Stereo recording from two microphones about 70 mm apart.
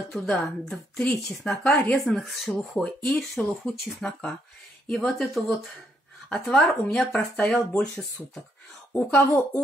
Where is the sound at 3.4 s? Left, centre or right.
Centre.